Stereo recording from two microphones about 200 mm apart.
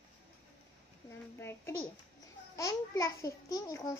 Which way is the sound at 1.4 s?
10° left (ahead or behind).